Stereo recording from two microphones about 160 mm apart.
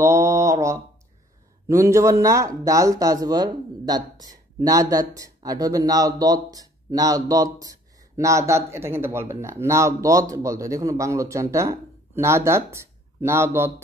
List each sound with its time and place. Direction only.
0.0 s mantra: 15° right (ahead or behind)
1.7 s a man's voice: 15° right (ahead or behind)